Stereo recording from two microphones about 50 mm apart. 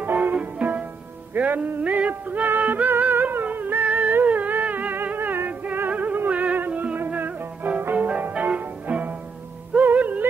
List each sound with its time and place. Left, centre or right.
0.0 s music: right
2.9 s humming: right
3.8 s humming: right
5.0 s music: right
5.9 s music: right